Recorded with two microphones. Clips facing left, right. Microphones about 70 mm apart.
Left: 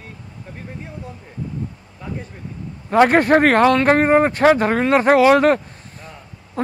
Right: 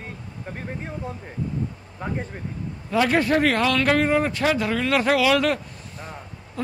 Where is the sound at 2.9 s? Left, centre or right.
Left.